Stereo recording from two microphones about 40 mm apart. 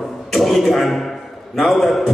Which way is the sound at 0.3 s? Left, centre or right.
Centre.